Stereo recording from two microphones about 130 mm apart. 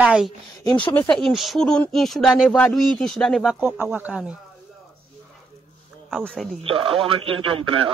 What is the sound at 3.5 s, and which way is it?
Speech, 15° right (ahead or behind).